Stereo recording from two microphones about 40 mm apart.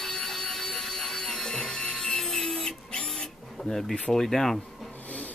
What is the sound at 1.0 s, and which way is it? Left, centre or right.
Printer, centre.